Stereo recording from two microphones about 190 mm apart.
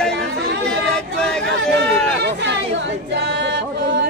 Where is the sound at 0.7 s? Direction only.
5° left (ahead or behind).